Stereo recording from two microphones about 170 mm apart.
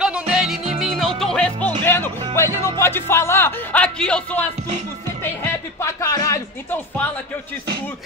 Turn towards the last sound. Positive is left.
turn(degrees=20)  # may be behind; listen again after turning